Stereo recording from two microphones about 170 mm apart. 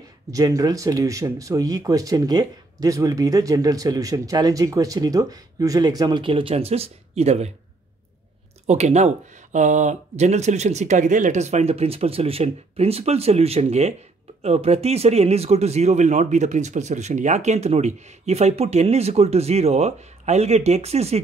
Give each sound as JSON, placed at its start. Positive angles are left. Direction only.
{"t": 0.3, "sound": "speech", "side_deg": -20}
{"t": 8.6, "sound": "speech", "side_deg": -40}